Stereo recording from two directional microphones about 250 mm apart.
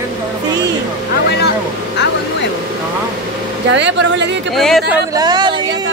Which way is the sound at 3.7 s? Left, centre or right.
Right.